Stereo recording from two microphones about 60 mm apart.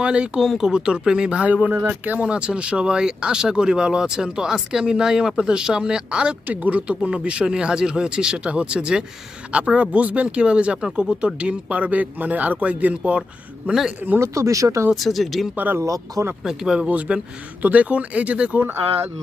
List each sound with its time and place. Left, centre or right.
0.0 s speech: centre
0.4 s speech: centre
6.4 s speech: right
14.2 s speech: right
15.0 s speech: centre
15.5 s speech: right
15.8 s speech: right
16.4 s speech: centre
16.8 s speech: right